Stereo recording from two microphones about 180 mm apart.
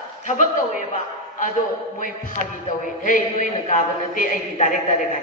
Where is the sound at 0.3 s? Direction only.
45° left (ahead or behind).